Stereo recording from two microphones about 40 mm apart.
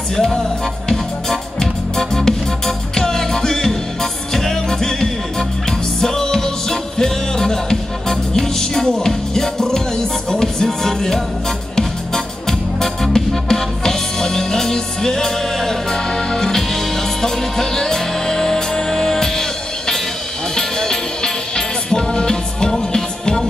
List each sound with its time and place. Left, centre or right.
0.1 s music: centre
20.5 s music: centre